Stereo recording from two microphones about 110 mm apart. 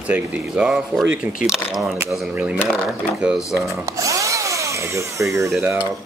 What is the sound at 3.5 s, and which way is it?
Drill, 30° right (ahead or behind).